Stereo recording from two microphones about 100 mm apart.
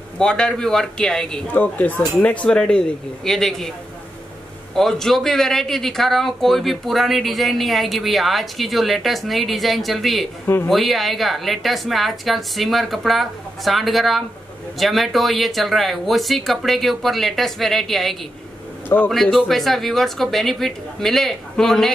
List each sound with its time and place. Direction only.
0.2 s speech: 10° left (ahead or behind)
1.5 s speech: 15° left (ahead or behind)
4.7 s speech: 5° left (ahead or behind)
10.4 s speech: 20° left (ahead or behind)
10.7 s speech: centre (ahead or behind)
18.9 s a man's voice: 30° left (ahead or behind)
19.3 s speech: centre (ahead or behind)